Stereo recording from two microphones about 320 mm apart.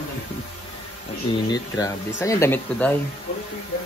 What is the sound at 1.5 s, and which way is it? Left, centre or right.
Speech, centre.